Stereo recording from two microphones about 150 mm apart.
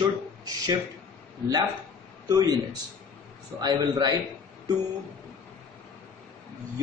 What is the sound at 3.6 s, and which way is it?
Speech, 25° right (ahead or behind).